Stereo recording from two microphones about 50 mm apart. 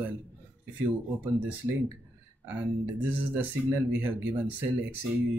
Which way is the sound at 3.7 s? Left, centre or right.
Right.